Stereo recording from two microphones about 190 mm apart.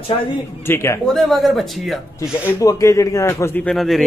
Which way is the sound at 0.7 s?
15° left (ahead or behind).